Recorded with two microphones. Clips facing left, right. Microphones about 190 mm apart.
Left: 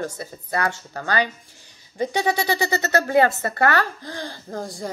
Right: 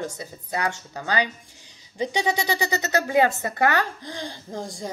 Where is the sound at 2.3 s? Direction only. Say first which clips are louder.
Left 3 dB; 15° right (ahead or behind).